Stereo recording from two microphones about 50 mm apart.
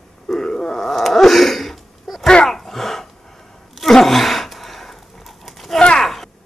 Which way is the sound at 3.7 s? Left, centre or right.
Centre.